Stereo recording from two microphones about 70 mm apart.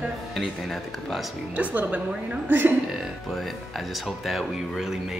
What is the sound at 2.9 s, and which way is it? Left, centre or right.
Speech, centre.